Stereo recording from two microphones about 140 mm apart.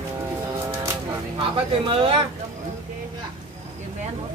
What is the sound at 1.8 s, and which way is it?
Speech, 40° right (ahead or behind).